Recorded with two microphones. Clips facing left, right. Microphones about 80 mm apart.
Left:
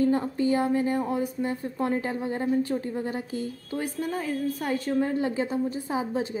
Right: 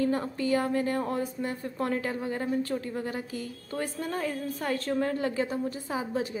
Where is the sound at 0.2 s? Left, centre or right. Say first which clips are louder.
Left 3 dB; left.